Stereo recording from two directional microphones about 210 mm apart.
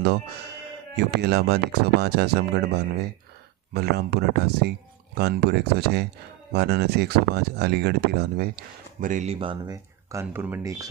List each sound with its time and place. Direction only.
0.9 s speech: 50° right (ahead or behind)
9.0 s speech: 35° right (ahead or behind); by 10.9 s 15° right (ahead or behind)